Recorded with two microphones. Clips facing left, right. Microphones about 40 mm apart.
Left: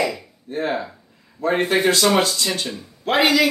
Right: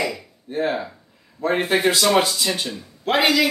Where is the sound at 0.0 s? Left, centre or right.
Centre.